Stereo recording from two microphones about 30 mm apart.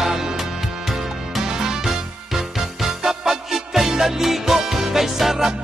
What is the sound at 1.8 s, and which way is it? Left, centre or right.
Music, centre.